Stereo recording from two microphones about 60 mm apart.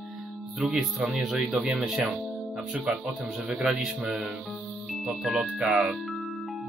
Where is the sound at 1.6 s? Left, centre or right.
Centre.